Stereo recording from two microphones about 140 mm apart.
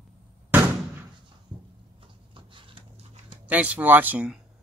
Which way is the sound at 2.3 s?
35° right (ahead or behind).